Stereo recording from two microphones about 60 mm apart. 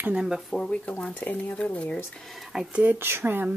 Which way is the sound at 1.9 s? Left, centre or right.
Centre.